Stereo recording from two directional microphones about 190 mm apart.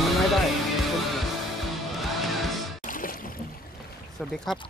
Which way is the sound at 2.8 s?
45° left (ahead or behind).